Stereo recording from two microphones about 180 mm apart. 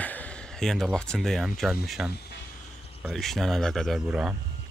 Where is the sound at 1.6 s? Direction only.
Centre (ahead or behind).